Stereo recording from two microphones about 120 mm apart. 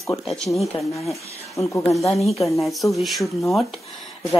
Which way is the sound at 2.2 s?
Centre (ahead or behind).